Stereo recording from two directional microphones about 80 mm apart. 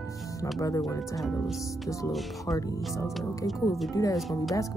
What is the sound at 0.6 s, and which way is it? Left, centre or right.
Speech, left.